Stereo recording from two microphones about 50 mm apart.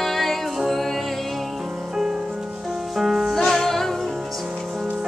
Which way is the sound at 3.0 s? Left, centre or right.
Centre.